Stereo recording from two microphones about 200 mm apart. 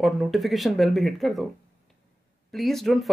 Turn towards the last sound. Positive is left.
turn(degrees=0)  # may be behind; listen again after turning